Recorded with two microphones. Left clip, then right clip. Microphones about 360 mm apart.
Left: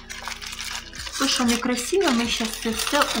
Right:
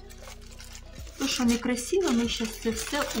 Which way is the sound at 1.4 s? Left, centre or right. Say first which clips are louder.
Left 5 dB; right.